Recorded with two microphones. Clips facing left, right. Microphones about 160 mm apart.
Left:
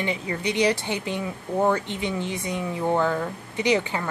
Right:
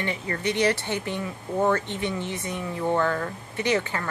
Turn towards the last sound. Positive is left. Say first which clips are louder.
# left 2 dB
turn(degrees=15)  # may be behind; listen again after turning